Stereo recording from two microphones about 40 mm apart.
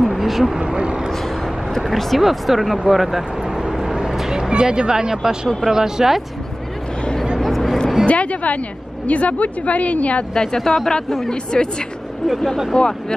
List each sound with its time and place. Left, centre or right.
0.0 s vehicle: centre
0.6 s vehicle: right
1.7 s speech: centre
2.9 s vehicle: centre
4.2 s speech: centre
7.3 s vehicle: centre
8.1 s a woman's voice: left
10.3 s a woman's voice: centre
12.7 s speech: centre